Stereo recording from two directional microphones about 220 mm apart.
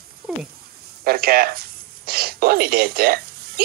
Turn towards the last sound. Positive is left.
turn(degrees=-45)  # may be behind; listen again after turning